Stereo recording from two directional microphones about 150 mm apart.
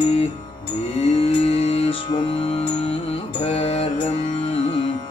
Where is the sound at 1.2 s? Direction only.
40° left (ahead or behind).